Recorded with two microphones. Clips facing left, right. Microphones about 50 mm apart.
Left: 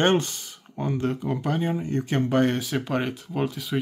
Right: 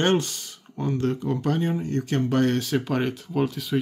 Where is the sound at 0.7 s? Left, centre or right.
Centre.